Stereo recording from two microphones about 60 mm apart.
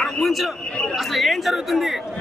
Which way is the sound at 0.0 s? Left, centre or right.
Centre.